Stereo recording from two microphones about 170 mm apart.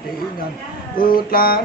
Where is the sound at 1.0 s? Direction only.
60° left (ahead or behind).